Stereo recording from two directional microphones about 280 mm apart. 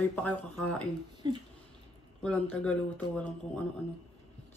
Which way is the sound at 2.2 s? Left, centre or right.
Centre.